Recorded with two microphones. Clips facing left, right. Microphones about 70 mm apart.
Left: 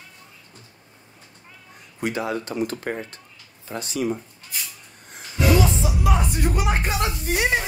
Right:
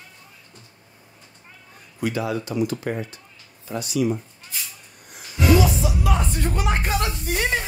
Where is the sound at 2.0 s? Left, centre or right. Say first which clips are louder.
Right 1 dB; left.